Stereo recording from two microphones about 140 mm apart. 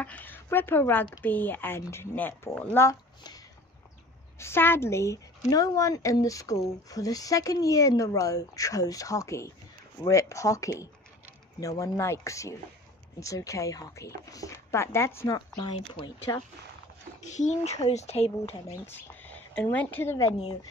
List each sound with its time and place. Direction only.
0.0 s a sound: 10° left (ahead or behind)
1.2 s speech: 15° left (ahead or behind)
2.6 s a sound: 20° left (ahead or behind)
4.4 s a woman's voice: 15° left (ahead or behind)
15.7 s speech: 40° left (ahead or behind)
16.3 s a woman's voice: 25° left (ahead or behind)
17.2 s speech: 55° left (ahead or behind)
18.7 s speech: 15° left (ahead or behind)